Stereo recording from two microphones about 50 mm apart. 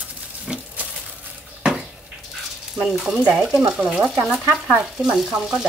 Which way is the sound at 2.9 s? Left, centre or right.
Centre.